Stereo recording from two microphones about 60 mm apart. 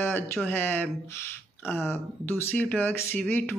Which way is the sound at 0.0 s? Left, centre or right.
Left.